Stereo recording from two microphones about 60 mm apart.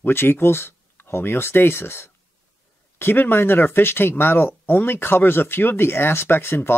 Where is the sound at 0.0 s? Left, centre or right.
Left.